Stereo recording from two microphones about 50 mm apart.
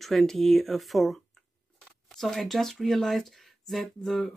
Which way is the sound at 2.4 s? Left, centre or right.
Centre.